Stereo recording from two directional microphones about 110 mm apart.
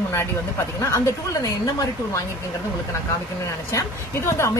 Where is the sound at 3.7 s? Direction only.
25° left (ahead or behind).